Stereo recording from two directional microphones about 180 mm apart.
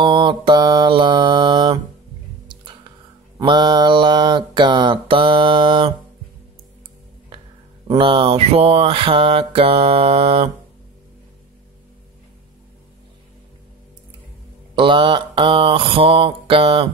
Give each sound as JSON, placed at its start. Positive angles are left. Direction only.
{"t": 0.0, "sound": "mantra", "side_deg": -25}
{"t": 2.4, "sound": "music", "side_deg": -25}
{"t": 3.3, "sound": "mantra", "side_deg": -25}
{"t": 7.9, "sound": "mantra", "side_deg": -30}
{"t": 14.8, "sound": "mantra", "side_deg": -25}